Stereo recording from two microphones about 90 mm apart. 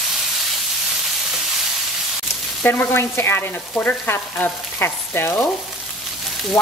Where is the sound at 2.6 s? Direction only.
25° left (ahead or behind).